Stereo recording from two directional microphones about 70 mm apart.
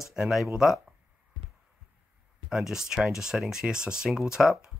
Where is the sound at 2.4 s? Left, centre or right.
Centre.